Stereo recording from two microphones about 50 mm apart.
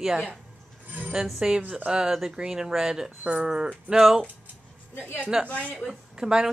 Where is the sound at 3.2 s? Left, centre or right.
Right.